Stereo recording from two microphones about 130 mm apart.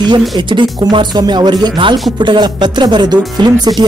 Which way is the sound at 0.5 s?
35° right (ahead or behind).